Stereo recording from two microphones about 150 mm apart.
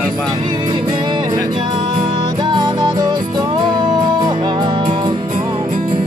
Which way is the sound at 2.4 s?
30° right (ahead or behind).